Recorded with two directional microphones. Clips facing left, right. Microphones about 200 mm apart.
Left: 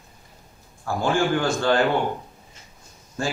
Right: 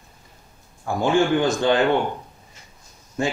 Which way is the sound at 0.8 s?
20° right (ahead or behind).